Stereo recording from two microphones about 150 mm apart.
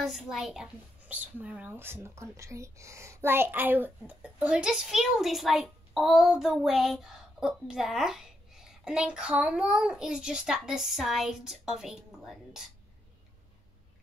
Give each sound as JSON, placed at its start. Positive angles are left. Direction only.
{"t": 0.0, "sound": "a child's voice", "side_deg": 0}